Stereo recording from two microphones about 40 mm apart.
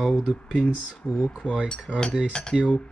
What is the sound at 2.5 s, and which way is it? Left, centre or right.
Speech, centre.